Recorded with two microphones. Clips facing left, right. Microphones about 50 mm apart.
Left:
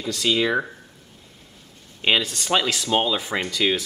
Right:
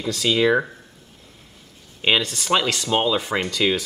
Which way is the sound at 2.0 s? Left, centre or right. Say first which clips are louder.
Right 1 dB; centre.